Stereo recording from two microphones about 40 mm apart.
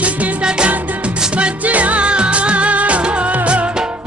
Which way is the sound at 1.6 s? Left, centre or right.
Right.